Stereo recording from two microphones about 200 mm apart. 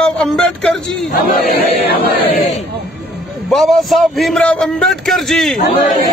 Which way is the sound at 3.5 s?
Centre (ahead or behind).